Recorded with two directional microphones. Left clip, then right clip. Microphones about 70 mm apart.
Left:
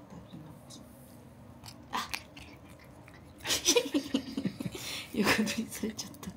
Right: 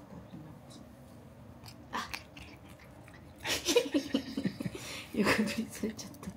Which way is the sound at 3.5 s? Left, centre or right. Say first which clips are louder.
Left 1 dB; left.